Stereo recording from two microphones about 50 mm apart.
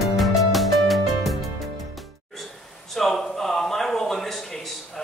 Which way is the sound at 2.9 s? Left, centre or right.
Centre.